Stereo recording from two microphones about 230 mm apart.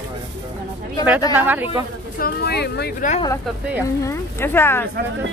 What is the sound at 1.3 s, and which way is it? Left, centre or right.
Speech, centre.